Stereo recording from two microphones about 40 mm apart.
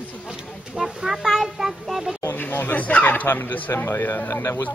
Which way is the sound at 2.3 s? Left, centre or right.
Left.